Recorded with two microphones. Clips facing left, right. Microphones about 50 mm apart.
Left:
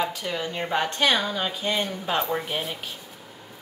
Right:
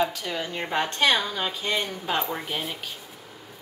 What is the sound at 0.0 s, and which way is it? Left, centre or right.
Speech, centre.